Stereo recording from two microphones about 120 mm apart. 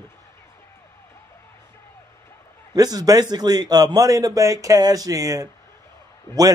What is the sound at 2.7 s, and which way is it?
A man's voice, 30° right (ahead or behind).